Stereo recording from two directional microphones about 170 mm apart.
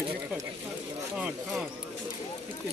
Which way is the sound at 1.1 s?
5° right (ahead or behind).